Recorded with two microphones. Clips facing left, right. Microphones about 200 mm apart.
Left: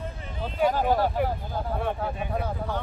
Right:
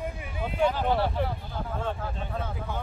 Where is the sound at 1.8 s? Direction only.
15° left (ahead or behind).